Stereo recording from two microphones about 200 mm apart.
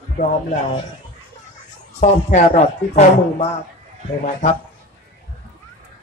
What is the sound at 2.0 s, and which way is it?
Speech, 35° left (ahead or behind).